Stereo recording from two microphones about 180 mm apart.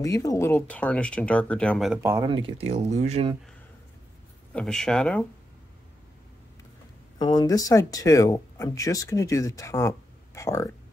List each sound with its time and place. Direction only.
0.0 s speech: 20° left (ahead or behind); by 2.0 s 5° left (ahead or behind)
2.2 s speech: 30° right (ahead or behind)
4.6 s speech: 5° left (ahead or behind)
7.2 s speech: 20° left (ahead or behind)